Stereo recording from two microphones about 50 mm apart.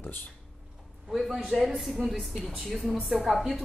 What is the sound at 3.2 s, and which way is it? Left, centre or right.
Speech, centre.